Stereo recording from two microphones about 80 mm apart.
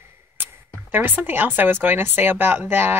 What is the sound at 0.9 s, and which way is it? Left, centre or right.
Speech, right.